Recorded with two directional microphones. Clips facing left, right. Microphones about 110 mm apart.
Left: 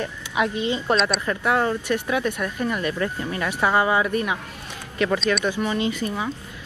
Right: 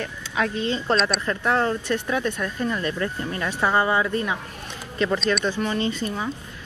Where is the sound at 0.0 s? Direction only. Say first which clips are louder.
Left 2 dB; 15° left (ahead or behind).